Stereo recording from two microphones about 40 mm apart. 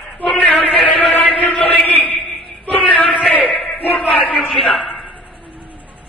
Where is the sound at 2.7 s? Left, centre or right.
Left.